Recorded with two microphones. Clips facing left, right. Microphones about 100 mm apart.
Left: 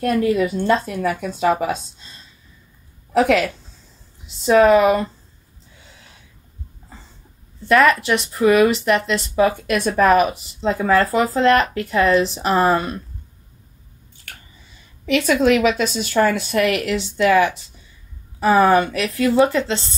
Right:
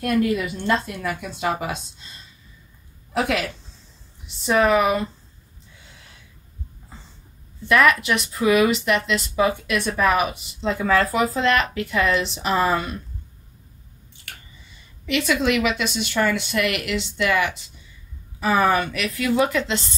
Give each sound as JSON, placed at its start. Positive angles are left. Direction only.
{"t": 0.0, "sound": "speech", "side_deg": 35}
{"t": 3.1, "sound": "a woman's voice", "side_deg": 35}
{"t": 4.6, "sound": "speech", "side_deg": 35}
{"t": 7.6, "sound": "speech", "side_deg": 35}
{"t": 15.0, "sound": "speech", "side_deg": 45}